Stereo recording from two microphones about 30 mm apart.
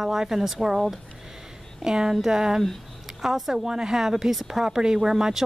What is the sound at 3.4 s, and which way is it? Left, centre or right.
Speech, centre.